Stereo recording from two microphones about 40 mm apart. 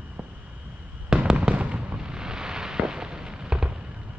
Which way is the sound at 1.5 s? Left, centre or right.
Right.